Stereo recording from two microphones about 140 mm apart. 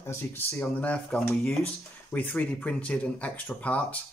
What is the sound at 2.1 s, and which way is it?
Speech, 10° left (ahead or behind).